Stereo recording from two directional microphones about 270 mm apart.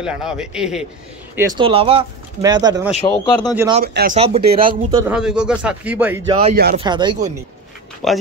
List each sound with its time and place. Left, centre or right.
0.0 s a man's voice: centre
2.9 s speech: centre
3.8 s speech: right
5.0 s a man's voice: centre
6.5 s speech: right
6.8 s speech: centre
8.0 s a man's voice: centre